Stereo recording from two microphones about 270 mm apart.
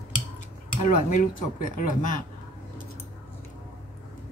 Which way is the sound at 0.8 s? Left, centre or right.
Left.